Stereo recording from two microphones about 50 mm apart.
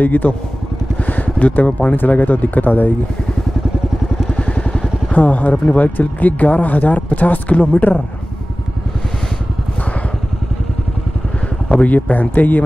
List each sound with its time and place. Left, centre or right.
0.0 s speech: left
4.3 s vehicle: centre
5.1 s speech: left
11.7 s speech: left